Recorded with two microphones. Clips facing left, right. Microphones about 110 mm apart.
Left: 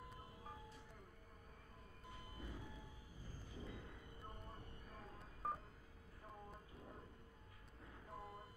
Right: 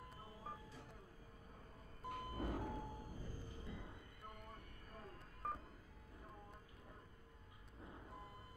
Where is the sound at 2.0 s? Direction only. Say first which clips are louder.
Right 11 dB; 60° right (ahead or behind).